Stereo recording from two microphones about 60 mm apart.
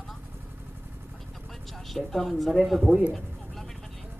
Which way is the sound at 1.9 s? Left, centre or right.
Centre.